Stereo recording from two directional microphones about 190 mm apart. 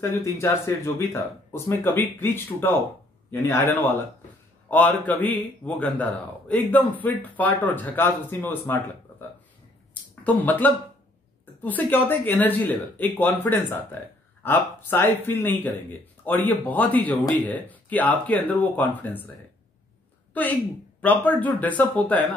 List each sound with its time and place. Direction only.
0.0 s a man's voice: 15° left (ahead or behind)
10.2 s a man's voice: 10° left (ahead or behind)
21.0 s a man's voice: 10° left (ahead or behind)